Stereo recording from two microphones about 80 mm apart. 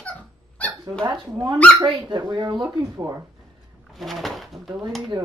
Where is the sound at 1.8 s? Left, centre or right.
Right.